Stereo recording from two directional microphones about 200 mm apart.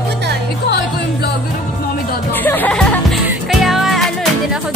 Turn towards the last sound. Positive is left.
turn(degrees=0)  # may be behind; listen again after turning